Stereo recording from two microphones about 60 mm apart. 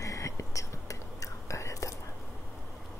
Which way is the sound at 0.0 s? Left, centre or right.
Left.